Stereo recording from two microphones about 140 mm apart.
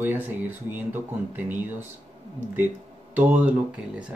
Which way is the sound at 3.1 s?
10° right (ahead or behind).